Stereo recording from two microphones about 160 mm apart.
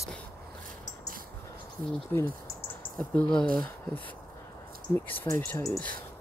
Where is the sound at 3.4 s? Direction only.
60° right (ahead or behind).